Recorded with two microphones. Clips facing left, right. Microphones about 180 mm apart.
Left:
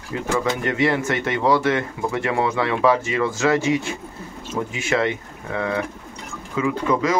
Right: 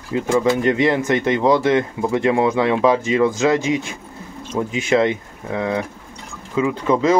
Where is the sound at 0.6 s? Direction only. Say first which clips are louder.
Right 4 dB; 20° right (ahead or behind).